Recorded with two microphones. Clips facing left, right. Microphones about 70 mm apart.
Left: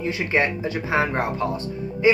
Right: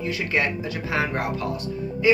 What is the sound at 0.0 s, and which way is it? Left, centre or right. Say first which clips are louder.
Speech: left 2 dB; left.